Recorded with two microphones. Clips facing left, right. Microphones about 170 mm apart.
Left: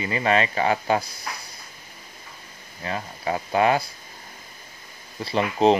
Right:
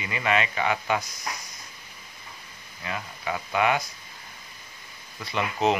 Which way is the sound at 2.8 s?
35° left (ahead or behind).